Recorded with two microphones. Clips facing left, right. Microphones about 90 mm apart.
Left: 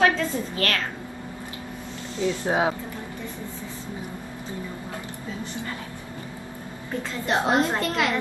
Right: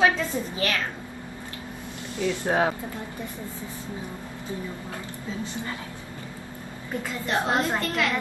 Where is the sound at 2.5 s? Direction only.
10° left (ahead or behind).